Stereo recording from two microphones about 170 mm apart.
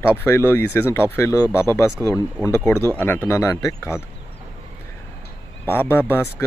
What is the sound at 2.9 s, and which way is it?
Speech, 10° left (ahead or behind).